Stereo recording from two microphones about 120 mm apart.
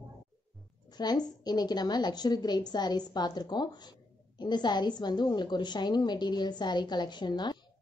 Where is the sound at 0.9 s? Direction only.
35° left (ahead or behind).